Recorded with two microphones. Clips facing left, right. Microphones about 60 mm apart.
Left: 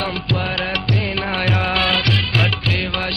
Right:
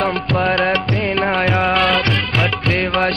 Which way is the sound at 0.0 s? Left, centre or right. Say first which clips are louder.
Right 5 dB; right.